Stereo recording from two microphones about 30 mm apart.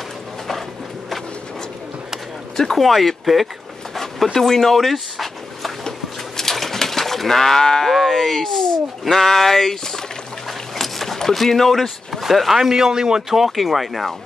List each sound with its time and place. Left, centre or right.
2.5 s speech: centre
2.8 s speech: centre
4.7 s a sound: centre
5.9 s a sound: centre
6.5 s livestock: centre
10.8 s a sound: centre
11.4 s speech: centre
12.1 s speech: centre; by 13.2 s right
13.6 s speech: centre